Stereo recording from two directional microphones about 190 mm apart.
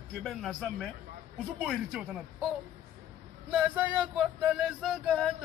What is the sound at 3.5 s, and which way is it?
A man's voice, 5° right (ahead or behind).